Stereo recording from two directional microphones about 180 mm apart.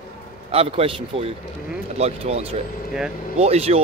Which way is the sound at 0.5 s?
35° right (ahead or behind).